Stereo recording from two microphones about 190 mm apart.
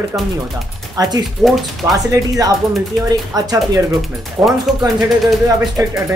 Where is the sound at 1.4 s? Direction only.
Centre (ahead or behind).